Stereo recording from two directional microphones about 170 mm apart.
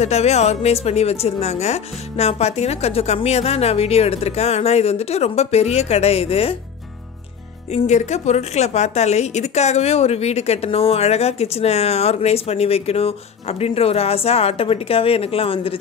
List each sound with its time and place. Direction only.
0.0 s a woman's voice: 40° left (ahead or behind)
7.7 s a woman's voice: 40° left (ahead or behind)